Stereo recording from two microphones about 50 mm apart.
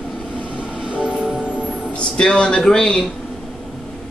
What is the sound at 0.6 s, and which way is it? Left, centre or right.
Train, centre.